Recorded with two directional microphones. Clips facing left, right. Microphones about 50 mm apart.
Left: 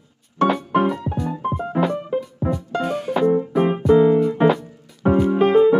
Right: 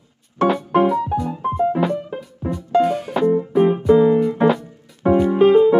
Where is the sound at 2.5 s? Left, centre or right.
Centre.